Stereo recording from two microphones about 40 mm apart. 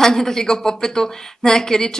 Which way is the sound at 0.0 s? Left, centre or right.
Centre.